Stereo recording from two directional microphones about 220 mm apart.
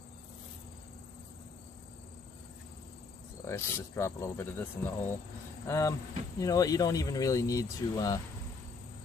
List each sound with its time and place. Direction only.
3.4 s speech: 10° left (ahead or behind)